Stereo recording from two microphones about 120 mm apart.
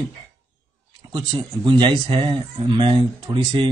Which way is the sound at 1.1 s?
40° right (ahead or behind).